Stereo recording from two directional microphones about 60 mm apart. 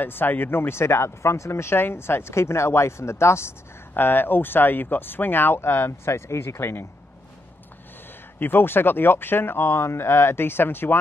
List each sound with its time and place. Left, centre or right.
0.0 s speech: left
3.9 s speech: left
8.4 s speech: left